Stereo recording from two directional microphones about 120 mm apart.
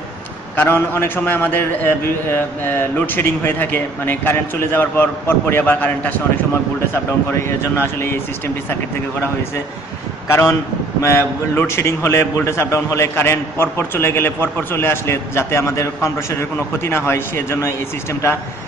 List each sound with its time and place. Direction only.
0.6 s a man's voice: 20° left (ahead or behind)
11.0 s a man's voice: 20° left (ahead or behind)